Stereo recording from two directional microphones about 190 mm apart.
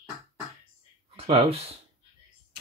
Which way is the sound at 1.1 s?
30° right (ahead or behind).